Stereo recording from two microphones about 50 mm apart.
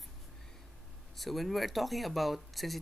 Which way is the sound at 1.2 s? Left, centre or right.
Centre.